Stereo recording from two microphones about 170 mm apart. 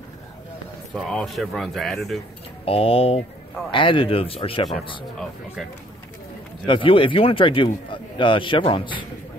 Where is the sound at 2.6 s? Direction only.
35° left (ahead or behind).